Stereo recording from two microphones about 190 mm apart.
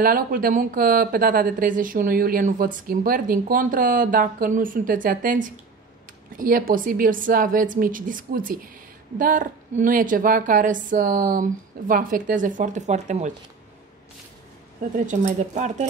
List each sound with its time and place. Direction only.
0.0 s speech: 50° right (ahead or behind)
15.0 s speech: 40° right (ahead or behind)